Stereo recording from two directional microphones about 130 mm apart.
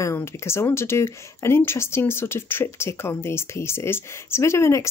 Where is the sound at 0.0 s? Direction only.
20° left (ahead or behind).